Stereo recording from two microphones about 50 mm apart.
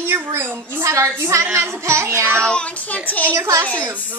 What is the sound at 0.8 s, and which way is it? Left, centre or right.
Speech, right.